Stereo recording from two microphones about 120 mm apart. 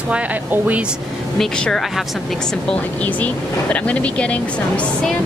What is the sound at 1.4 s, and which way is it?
Speech, 5° left (ahead or behind).